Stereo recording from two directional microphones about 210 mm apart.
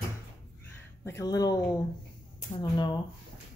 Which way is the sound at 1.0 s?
15° left (ahead or behind).